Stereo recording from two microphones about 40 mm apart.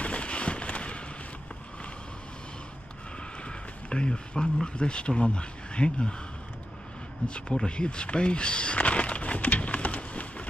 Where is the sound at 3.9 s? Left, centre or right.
Left.